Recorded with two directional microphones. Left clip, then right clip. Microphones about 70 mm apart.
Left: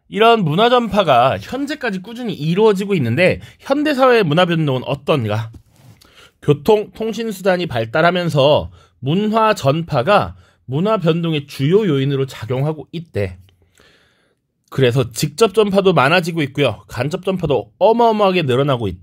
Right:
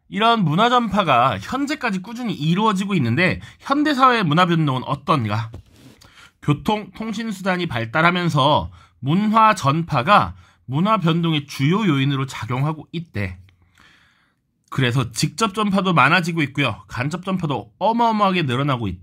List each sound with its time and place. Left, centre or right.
0.1 s speech: left
0.4 s speech: left
0.9 s a man's voice: left
1.5 s speech: centre; by 2.5 s left
2.5 s speech: left
6.1 s a sound: left
6.8 s speech: left
9.4 s speech: left
10.7 s a man's voice: left
12.4 s a man's voice: left
12.6 s speech: left
14.7 s speech: left